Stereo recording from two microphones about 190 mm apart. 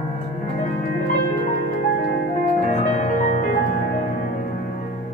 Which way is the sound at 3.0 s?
45° left (ahead or behind).